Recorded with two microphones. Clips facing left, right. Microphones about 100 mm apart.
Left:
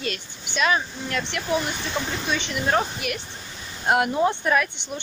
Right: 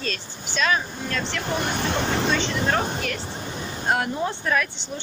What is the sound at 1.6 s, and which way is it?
Speech, 60° right (ahead or behind).